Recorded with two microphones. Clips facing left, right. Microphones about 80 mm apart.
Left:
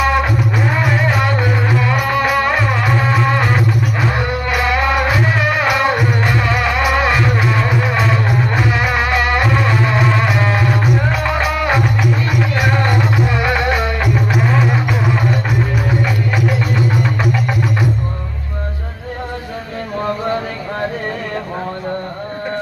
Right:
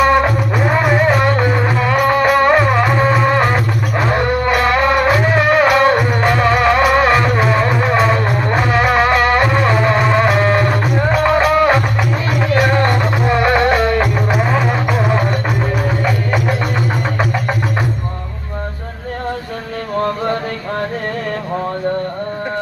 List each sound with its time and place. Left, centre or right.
0.0 s music: centre
0.7 s music: centre
10.5 s music: centre
16.4 s music: right